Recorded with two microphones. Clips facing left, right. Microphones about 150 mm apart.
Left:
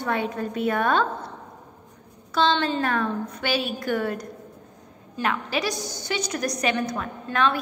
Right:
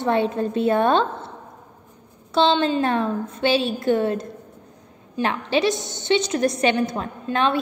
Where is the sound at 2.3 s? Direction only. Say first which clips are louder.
Right 4 dB; 25° right (ahead or behind).